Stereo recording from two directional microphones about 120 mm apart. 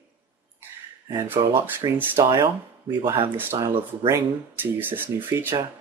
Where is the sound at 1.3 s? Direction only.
40° right (ahead or behind).